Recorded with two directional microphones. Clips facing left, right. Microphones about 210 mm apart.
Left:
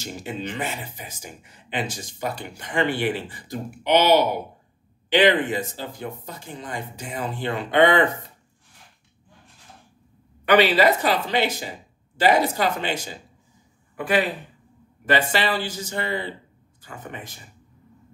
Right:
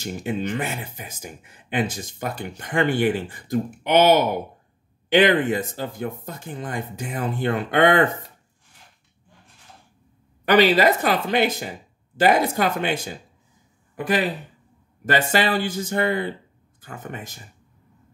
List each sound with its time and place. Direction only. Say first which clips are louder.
0.0 s speech: right 5 dB; 50° right (ahead or behind)
10.4 s speech: right 1 dB; 45° right (ahead or behind)
13.9 s speech: even; 45° right (ahead or behind)